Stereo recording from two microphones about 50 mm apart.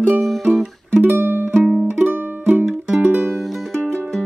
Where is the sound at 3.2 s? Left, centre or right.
Centre.